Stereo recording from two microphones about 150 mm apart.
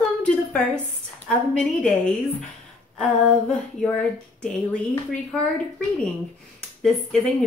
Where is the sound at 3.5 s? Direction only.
5° left (ahead or behind).